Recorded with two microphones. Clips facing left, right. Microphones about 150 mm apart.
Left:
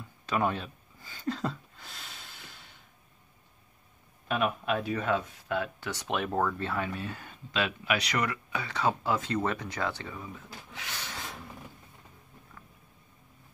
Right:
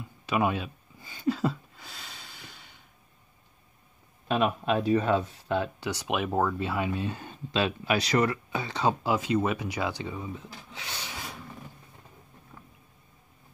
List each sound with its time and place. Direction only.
0.3 s speech: 10° right (ahead or behind)
1.0 s a sound: 10° right (ahead or behind)
4.3 s speech: 25° right (ahead or behind)
5.9 s speech: 10° right (ahead or behind)
6.9 s speech: 25° right (ahead or behind)
9.1 s speech: 10° right (ahead or behind)
11.1 s a sound: centre (ahead or behind)